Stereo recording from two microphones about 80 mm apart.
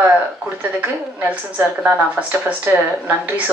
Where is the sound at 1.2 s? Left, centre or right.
Right.